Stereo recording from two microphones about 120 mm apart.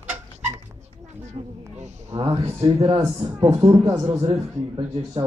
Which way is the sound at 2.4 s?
55° right (ahead or behind).